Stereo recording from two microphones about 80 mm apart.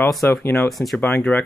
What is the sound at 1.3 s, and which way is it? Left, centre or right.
Speech, centre.